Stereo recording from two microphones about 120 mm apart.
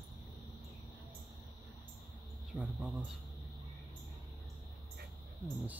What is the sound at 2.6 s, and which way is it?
Speech, 10° right (ahead or behind).